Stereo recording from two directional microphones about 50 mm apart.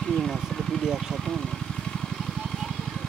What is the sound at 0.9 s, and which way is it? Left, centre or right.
Vehicle, centre.